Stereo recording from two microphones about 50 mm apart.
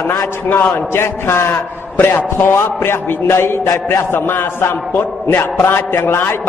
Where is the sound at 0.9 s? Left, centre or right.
Left.